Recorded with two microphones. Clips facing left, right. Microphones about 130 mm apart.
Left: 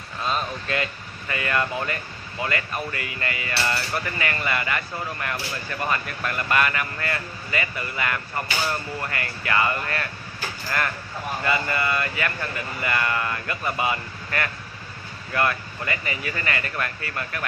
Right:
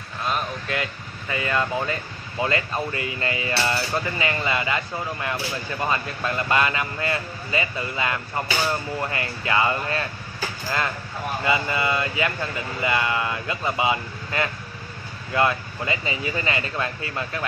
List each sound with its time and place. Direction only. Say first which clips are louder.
0.3 s a sound: even; 10° right (ahead or behind)
1.3 s speech: right 1 dB; 15° right (ahead or behind)
2.4 s cutlery: right 3 dB; 25° right (ahead or behind)
11.4 s cutlery: right 1 dB; 15° right (ahead or behind)